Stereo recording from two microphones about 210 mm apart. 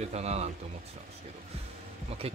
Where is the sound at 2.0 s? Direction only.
30° right (ahead or behind).